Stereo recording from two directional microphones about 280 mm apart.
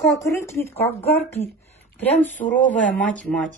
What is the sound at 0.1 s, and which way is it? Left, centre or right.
Speech, centre.